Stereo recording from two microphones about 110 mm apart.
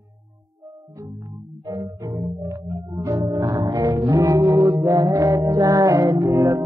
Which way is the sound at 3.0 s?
30° right (ahead or behind).